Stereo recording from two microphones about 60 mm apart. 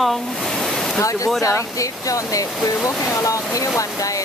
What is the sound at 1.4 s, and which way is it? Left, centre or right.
Speech, left.